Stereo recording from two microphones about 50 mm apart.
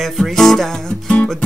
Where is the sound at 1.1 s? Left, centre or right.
Left.